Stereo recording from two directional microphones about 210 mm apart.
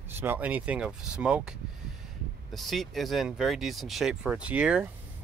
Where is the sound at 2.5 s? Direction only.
Centre (ahead or behind).